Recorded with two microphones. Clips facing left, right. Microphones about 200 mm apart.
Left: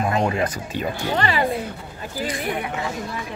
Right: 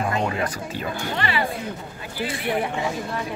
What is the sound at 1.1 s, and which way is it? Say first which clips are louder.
Speech: left 4 dB; 40° left (ahead or behind).